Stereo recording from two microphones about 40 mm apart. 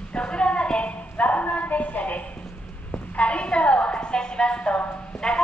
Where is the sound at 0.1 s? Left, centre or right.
Left.